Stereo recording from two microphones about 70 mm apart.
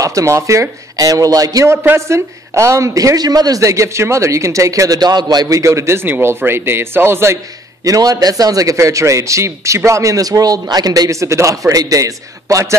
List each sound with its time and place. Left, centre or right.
0.0 s a man's voice: right
2.0 s a woman's voice: right
5.5 s a woman's voice: right
6.0 s speech: right
7.8 s a man's voice: right